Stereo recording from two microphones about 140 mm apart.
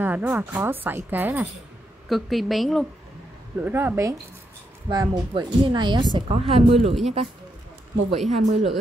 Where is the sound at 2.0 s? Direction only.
Centre (ahead or behind).